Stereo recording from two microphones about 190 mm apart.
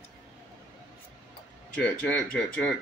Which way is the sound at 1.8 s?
5° left (ahead or behind).